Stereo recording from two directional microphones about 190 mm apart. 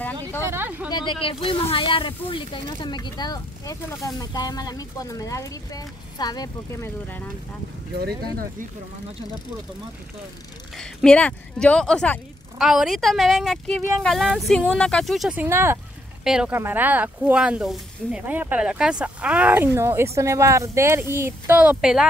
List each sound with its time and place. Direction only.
0.5 s a sound: 10° right (ahead or behind)
0.8 s speech: 20° left (ahead or behind)
8.0 s speech: 55° right (ahead or behind)
10.8 s speech: 5° left (ahead or behind)